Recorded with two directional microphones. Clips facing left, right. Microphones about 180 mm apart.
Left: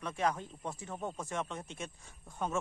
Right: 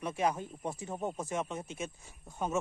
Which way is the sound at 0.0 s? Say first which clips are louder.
Right 2 dB; 10° right (ahead or behind).